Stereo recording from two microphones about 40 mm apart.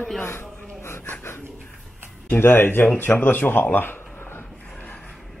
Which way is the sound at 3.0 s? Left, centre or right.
Left.